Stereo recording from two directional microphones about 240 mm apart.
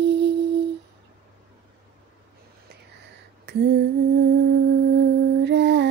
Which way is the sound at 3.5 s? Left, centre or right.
Right.